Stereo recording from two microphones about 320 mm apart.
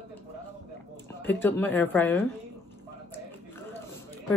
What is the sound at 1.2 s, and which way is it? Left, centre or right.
Speech, centre.